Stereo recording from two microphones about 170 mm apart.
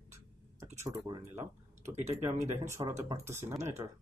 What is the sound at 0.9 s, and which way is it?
Speech, 25° right (ahead or behind).